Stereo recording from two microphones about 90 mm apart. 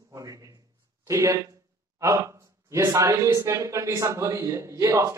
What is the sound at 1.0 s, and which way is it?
Speech, 35° right (ahead or behind).